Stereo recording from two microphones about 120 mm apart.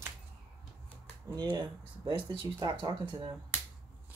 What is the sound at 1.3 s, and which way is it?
Speech, 35° right (ahead or behind).